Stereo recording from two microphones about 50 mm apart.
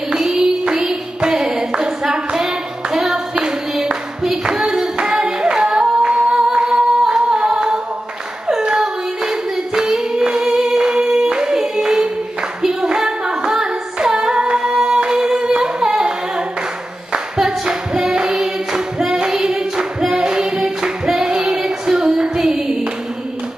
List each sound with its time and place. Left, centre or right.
0.1 s child singing: centre
0.8 s clapping: centre
4.9 s music: centre
5.7 s singing: centre
7.3 s a capella: centre
8.5 s singing: centre
10.5 s music: centre
12.6 s a sound: centre
13.9 s female singing: centre
14.3 s music: centre
14.6 s humming: centre
17.1 s singing: centre
21.4 s child singing: centre